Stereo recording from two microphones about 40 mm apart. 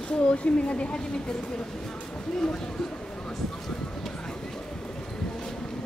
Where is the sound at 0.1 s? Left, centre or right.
Left.